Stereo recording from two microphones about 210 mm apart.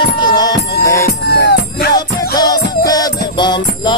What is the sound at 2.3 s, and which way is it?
Music, 20° left (ahead or behind).